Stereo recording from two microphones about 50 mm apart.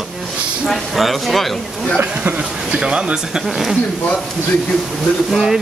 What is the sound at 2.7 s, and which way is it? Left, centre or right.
Speech, centre.